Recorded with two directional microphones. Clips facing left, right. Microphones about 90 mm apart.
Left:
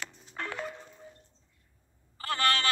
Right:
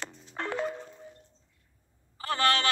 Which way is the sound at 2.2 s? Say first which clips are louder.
Right 2 dB; 25° right (ahead or behind).